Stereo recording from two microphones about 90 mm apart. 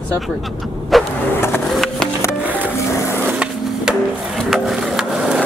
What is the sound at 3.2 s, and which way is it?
Skateboard, 10° right (ahead or behind).